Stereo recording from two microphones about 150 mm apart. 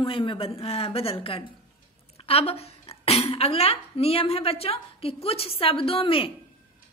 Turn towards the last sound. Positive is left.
turn(degrees=35)  # may be behind; listen again after turning